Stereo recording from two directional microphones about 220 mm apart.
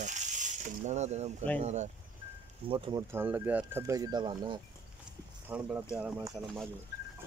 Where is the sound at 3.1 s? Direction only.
10° right (ahead or behind).